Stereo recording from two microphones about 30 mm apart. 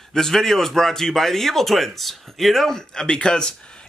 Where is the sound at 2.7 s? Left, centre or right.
Left.